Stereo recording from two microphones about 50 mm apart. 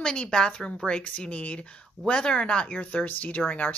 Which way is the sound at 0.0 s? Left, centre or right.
Centre.